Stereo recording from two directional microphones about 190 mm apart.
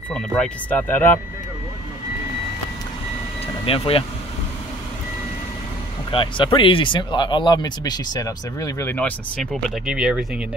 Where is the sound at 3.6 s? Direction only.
30° left (ahead or behind).